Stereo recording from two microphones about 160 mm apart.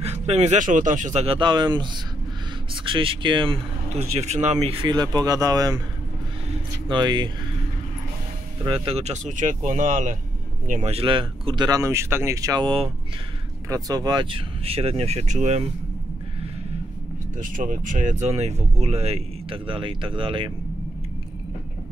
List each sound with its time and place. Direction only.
0.0 s speech: 40° right (ahead or behind); by 5.8 s 25° right (ahead or behind)
6.9 s speech: 30° right (ahead or behind)
8.6 s speech: 35° right (ahead or behind); by 10.1 s 50° right (ahead or behind)
10.7 s speech: 40° right (ahead or behind); by 12.6 s 20° right (ahead or behind)
12.6 s speech: 35° right (ahead or behind)
13.7 s speech: 25° right (ahead or behind)
14.6 s speech: 40° right (ahead or behind)
17.4 s speech: 55° right (ahead or behind); by 20.5 s 30° right (ahead or behind)